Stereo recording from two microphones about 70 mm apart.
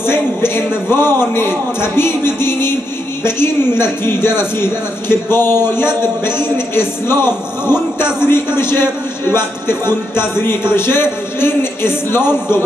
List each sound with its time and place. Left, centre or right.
0.0 s a man's voice: left